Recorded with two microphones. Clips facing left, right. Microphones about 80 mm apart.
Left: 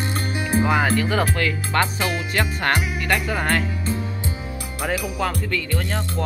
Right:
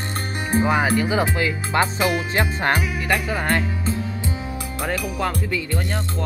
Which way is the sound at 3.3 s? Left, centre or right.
Centre.